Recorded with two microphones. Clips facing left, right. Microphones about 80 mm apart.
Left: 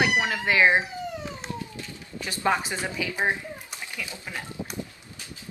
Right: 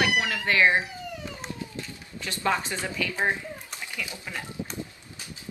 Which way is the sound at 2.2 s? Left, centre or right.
Centre.